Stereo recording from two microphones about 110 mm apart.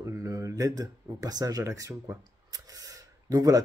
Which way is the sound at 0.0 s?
30° right (ahead or behind).